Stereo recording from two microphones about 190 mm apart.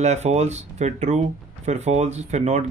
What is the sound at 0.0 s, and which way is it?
Speech, 35° right (ahead or behind).